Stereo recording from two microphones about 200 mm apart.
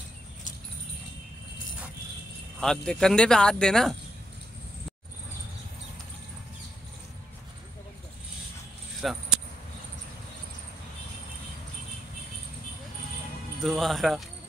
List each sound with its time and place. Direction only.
2.6 s speech: 5° left (ahead or behind)
9.0 s speech: centre (ahead or behind)
13.7 s speech: centre (ahead or behind)